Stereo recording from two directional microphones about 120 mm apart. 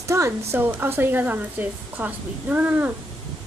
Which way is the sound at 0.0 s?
25° right (ahead or behind).